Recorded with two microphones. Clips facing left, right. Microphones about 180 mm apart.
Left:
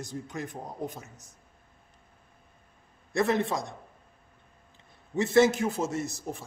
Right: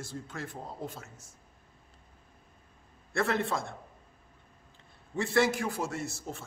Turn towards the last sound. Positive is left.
turn(degrees=15)  # may be behind; listen again after turning